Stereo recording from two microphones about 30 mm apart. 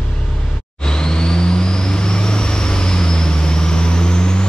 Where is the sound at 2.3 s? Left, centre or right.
Left.